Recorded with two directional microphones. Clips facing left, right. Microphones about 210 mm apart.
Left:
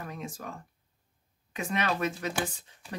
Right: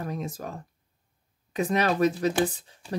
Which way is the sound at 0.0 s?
40° right (ahead or behind).